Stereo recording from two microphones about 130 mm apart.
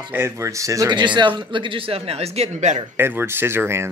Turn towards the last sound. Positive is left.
turn(degrees=-20)  # may be behind; listen again after turning